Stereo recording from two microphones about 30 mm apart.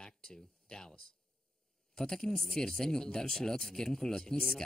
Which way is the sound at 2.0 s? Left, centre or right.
Centre.